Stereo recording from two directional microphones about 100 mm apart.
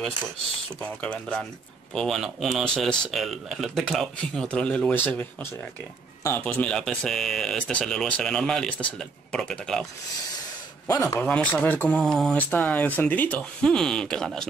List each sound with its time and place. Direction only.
0.7 s speech: 15° left (ahead or behind)
2.0 s speech: centre (ahead or behind)
4.9 s speech: 20° left (ahead or behind); by 9.8 s 5° left (ahead or behind)
10.9 s speech: 30° left (ahead or behind)
11.2 s speech: 10° left (ahead or behind)
12.0 s speech: 5° left (ahead or behind)
12.5 s speech: 15° left (ahead or behind)